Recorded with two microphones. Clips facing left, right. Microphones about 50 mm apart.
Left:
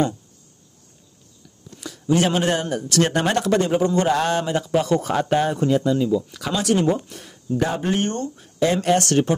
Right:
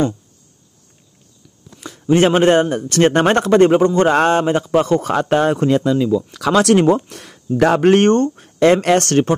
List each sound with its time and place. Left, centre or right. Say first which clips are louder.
1.8 s a man's voice: right 6 dB; right